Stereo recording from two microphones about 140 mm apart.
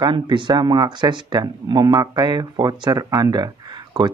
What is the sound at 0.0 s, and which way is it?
A man's voice, 35° right (ahead or behind).